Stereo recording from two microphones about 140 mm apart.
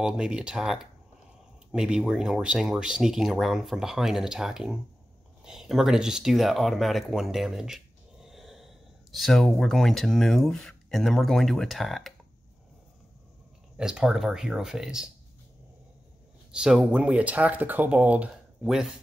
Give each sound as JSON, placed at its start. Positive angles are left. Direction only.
{"t": 0.0, "sound": "speech", "side_deg": -5}
{"t": 13.7, "sound": "speech", "side_deg": -5}
{"t": 16.5, "sound": "speech", "side_deg": -5}